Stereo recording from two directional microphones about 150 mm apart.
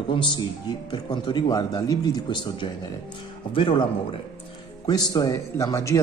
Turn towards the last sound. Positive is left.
turn(degrees=20)  # may be behind; listen again after turning